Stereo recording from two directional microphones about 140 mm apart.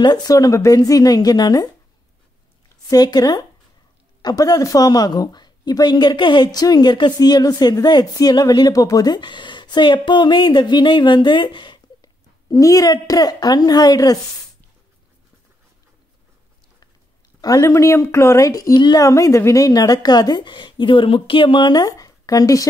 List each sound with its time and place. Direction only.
0.0 s a woman's voice: 30° left (ahead or behind)
2.9 s a woman's voice: 30° left (ahead or behind)
17.4 s a woman's voice: 25° left (ahead or behind)